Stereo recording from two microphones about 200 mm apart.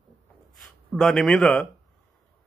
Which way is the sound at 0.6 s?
Centre (ahead or behind).